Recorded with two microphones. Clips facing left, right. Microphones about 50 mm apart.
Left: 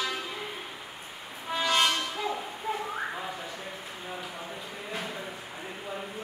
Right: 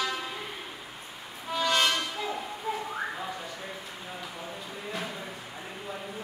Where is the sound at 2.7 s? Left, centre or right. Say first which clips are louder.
Left 1 dB; centre.